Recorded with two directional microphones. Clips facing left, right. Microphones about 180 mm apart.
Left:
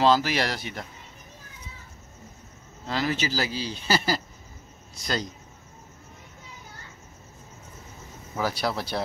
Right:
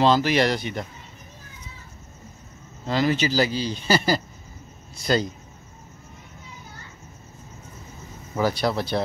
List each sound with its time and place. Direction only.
0.0 s speech: 5° left (ahead or behind)
2.9 s speech: centre (ahead or behind)
8.4 s speech: 5° left (ahead or behind)